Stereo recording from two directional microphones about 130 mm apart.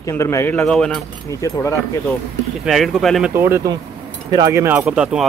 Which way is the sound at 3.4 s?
20° right (ahead or behind).